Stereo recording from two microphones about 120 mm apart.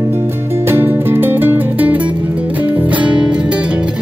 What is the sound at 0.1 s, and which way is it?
Music, 20° right (ahead or behind).